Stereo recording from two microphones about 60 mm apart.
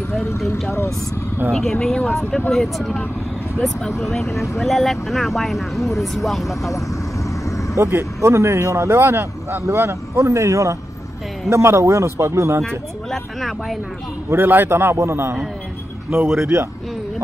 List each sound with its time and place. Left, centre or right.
0.7 s speech: left
1.5 s speech: centre
2.0 s speech: centre
4.4 s speech: centre
7.4 s vehicle: left
7.7 s speech: right
12.6 s speech: centre
14.3 s a man's voice: right
15.0 s speech: right
16.3 s speech: right